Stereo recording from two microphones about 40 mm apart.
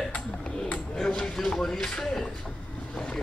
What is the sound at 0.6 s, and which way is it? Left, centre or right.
Speech, left.